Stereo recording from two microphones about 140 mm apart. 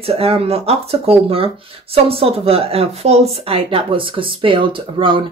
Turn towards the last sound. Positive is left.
turn(degrees=-35)  # may be behind; listen again after turning